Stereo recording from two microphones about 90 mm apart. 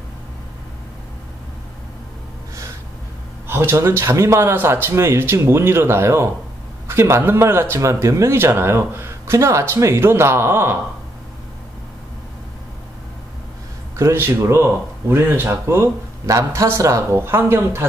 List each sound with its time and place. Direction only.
3.4 s speech: 25° right (ahead or behind)
13.9 s speech: 30° right (ahead or behind)